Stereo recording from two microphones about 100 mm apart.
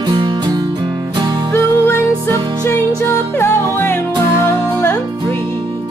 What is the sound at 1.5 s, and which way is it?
Music, 20° left (ahead or behind).